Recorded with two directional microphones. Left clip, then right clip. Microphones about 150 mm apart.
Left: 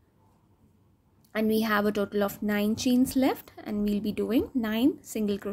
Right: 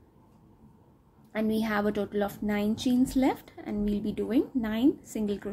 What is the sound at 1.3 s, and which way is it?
A woman's voice, 40° left (ahead or behind).